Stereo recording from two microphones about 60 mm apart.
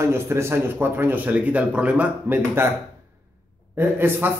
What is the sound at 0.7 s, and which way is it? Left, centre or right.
Speech, right.